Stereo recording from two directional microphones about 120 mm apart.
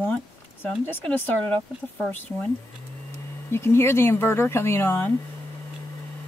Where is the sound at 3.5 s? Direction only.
20° left (ahead or behind).